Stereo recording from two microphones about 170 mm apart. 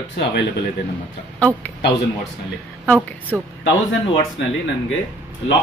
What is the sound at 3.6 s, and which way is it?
Speech, 90° left.